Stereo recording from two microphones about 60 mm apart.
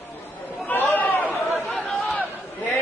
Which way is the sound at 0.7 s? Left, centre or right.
Left.